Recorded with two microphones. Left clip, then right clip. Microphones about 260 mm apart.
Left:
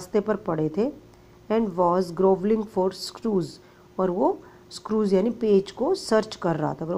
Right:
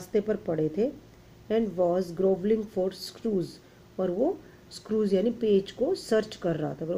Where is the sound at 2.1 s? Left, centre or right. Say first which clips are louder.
Left 4 dB; centre.